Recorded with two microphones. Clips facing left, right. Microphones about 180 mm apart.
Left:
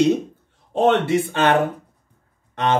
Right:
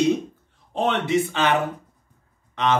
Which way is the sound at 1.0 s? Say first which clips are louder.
Left 3 dB; 55° left (ahead or behind).